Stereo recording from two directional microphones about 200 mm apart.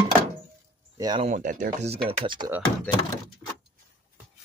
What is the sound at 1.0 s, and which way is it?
Speech, 20° right (ahead or behind).